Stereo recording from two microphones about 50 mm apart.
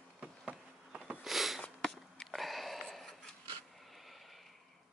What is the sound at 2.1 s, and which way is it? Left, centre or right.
Sniff, centre.